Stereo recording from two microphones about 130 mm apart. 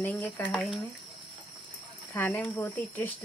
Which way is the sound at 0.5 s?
Centre (ahead or behind).